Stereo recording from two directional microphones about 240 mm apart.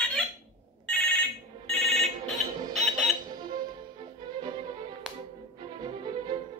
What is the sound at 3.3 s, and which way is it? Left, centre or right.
Music, centre.